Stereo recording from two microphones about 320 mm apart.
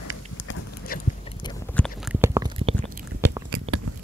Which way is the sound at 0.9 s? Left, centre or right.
Left.